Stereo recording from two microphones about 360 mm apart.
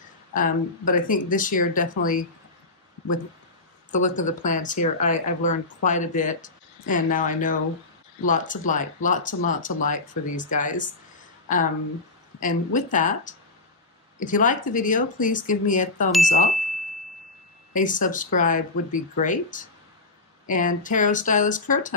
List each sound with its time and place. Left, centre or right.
0.3 s speech: left
3.9 s speech: left
16.4 s a sound: centre
17.7 s speech: left